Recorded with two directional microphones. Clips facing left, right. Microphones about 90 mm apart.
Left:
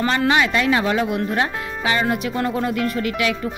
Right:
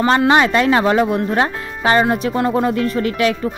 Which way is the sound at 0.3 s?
35° right (ahead or behind).